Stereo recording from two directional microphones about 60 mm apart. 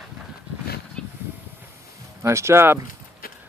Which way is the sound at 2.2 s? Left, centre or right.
Right.